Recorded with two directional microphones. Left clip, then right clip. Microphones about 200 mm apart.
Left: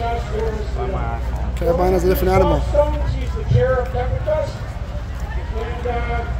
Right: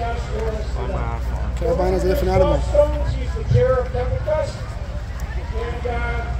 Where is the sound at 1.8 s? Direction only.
15° left (ahead or behind).